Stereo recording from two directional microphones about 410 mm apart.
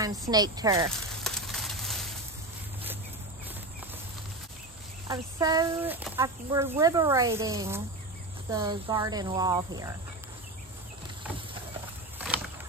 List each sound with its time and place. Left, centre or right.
0.0 s sizzle: centre
5.0 s speech: centre